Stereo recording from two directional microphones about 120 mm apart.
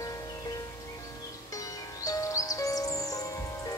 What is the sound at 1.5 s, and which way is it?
Music, 30° left (ahead or behind).